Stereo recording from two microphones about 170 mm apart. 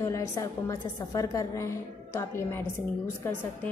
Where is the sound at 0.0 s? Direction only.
20° left (ahead or behind).